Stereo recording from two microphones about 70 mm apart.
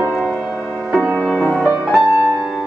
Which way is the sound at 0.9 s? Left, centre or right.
Centre.